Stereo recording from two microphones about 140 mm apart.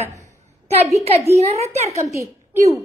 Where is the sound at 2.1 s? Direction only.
20° right (ahead or behind).